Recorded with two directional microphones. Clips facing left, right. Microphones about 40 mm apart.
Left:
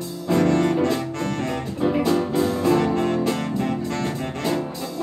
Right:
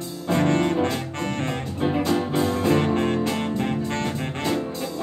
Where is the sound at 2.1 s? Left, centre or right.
Right.